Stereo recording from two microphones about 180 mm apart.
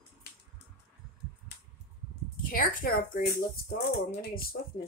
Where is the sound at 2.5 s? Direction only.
50° left (ahead or behind).